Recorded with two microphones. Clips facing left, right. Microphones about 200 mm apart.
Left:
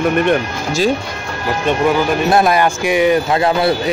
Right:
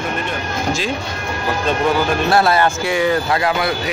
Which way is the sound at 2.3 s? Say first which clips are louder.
Left 1 dB; 15° left (ahead or behind).